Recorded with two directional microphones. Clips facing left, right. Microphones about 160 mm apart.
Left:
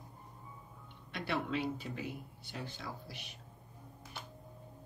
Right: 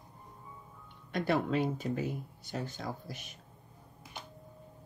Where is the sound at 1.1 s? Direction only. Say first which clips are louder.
Right 7 dB; 45° right (ahead or behind).